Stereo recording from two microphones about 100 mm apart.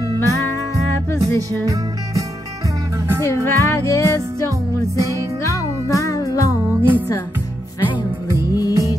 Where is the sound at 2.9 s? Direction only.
25° right (ahead or behind).